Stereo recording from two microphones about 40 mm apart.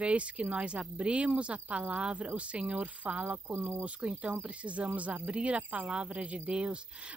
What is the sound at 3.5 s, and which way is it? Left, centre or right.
Speech, right.